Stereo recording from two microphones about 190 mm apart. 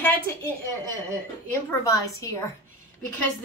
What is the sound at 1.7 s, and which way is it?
Speech, 15° left (ahead or behind).